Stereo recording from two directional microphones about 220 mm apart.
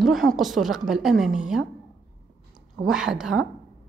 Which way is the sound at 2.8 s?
5° right (ahead or behind).